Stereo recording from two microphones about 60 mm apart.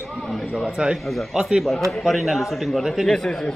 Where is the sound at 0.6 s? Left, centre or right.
Centre.